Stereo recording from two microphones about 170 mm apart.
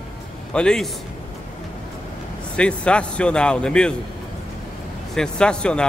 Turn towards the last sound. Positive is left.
turn(degrees=5)  # may be behind; listen again after turning